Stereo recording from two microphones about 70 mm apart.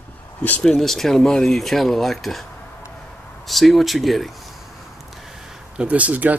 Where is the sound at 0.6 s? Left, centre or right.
Centre.